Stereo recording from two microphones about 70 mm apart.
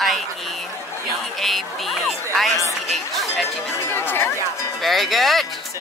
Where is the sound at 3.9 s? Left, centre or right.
Left.